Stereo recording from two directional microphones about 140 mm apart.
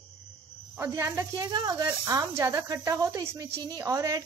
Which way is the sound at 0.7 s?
20° right (ahead or behind).